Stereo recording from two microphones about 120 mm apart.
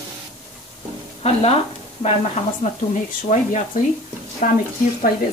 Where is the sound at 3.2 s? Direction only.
90° left.